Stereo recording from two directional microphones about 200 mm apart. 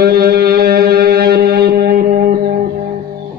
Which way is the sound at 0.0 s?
50° right (ahead or behind).